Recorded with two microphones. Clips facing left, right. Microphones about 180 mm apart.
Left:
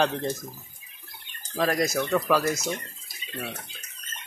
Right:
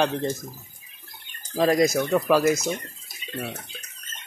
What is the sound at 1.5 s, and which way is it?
Speech, 20° right (ahead or behind).